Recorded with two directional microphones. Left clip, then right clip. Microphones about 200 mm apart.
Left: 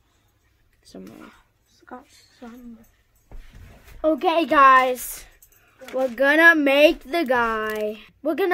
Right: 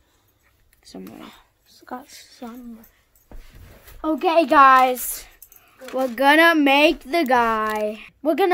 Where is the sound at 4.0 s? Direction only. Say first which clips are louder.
Right 1 dB; 20° right (ahead or behind).